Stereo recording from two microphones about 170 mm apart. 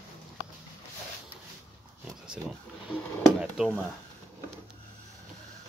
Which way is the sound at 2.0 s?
5° right (ahead or behind).